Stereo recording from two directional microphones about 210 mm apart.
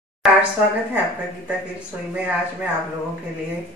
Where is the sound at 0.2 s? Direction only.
Centre (ahead or behind).